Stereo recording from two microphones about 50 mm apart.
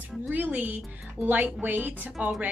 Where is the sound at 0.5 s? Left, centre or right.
Right.